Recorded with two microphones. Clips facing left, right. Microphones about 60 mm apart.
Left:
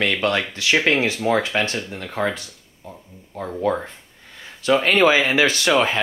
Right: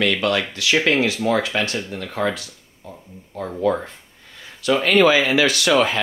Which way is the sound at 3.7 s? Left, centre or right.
Left.